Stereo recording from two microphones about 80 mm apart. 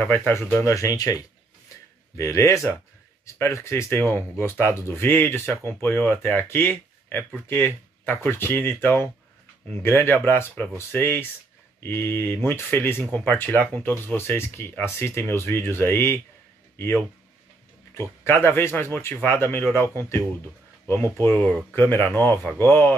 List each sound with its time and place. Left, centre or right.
0.0 s a man's voice: left
18.2 s speech: left